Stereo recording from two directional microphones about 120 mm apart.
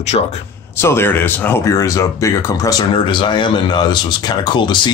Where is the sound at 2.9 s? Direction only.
45° left (ahead or behind).